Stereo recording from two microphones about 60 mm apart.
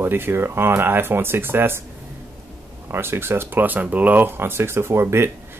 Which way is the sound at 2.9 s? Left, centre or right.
Right.